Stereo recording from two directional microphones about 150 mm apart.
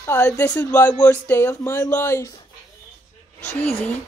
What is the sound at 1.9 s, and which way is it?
Speech, 10° left (ahead or behind).